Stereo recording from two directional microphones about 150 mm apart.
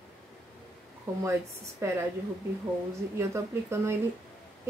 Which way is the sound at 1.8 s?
20° right (ahead or behind).